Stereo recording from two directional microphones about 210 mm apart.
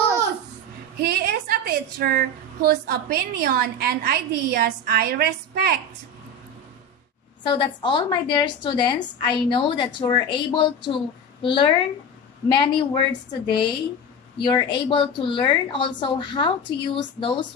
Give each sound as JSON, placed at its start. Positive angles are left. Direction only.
{"t": 1.0, "sound": "a woman's voice", "side_deg": -50}
{"t": 7.4, "sound": "a woman's voice", "side_deg": 25}